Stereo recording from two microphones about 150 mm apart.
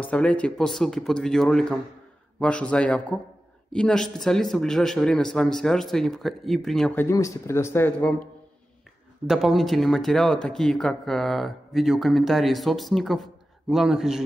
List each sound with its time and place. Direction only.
0.0 s speech: 10° left (ahead or behind)
7.0 s speech: 20° left (ahead or behind)
9.3 s speech: centre (ahead or behind)